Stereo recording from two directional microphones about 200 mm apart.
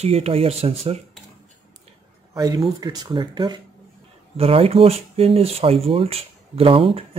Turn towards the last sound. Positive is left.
turn(degrees=-30)  # may be behind; listen again after turning